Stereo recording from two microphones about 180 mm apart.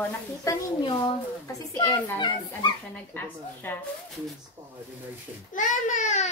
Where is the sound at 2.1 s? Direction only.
25° left (ahead or behind).